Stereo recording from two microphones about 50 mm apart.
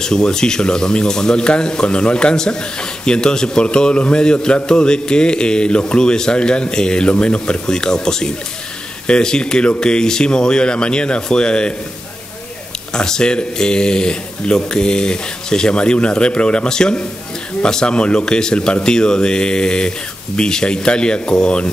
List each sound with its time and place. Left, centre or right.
0.0 s a man's voice: centre
12.9 s a man's voice: centre